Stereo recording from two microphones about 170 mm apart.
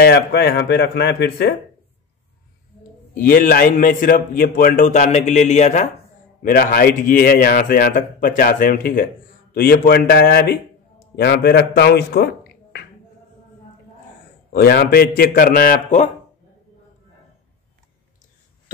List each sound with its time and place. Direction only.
0.0 s speech: 70° left (ahead or behind)
3.2 s a man's voice: 55° left (ahead or behind)
6.4 s a man's voice: 55° left (ahead or behind); by 12.3 s 75° left (ahead or behind)
14.5 s a man's voice: 65° left (ahead or behind)